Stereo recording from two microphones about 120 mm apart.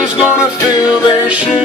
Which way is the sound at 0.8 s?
10° right (ahead or behind).